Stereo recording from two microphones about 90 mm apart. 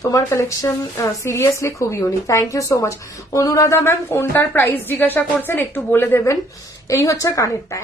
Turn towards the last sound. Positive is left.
turn(degrees=35)  # may be behind; listen again after turning